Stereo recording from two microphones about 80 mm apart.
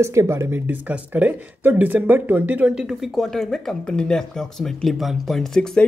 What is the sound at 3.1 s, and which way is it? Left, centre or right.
Speech, centre.